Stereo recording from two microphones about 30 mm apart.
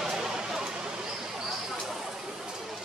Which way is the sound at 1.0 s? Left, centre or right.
Centre.